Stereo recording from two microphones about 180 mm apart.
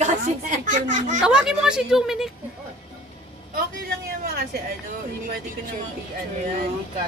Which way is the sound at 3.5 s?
55° right (ahead or behind).